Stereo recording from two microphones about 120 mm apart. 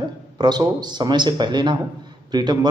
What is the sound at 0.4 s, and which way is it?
Speech, 35° right (ahead or behind).